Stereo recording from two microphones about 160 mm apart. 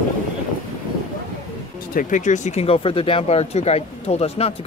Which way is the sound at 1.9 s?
55° left (ahead or behind).